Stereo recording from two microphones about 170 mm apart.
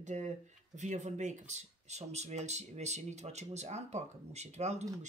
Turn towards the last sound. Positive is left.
turn(degrees=-40)  # may be behind; listen again after turning